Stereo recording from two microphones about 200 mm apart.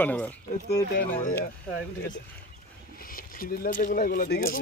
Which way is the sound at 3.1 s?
45° left (ahead or behind).